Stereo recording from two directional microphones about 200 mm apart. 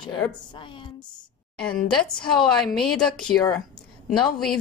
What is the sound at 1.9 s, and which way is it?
Speech, 5° left (ahead or behind).